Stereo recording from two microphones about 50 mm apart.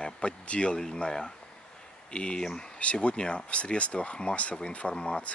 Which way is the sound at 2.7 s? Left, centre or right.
Left.